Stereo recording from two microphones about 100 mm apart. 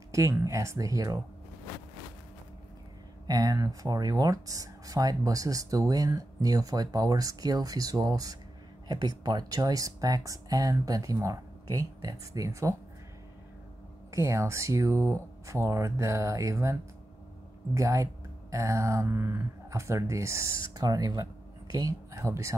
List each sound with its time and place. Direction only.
0.1 s speech: 30° right (ahead or behind)
3.3 s speech: 40° right (ahead or behind)
14.1 s speech: 30° right (ahead or behind)
17.7 s speech: 30° right (ahead or behind)